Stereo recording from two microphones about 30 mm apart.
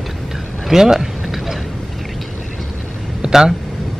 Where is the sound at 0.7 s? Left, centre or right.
Centre.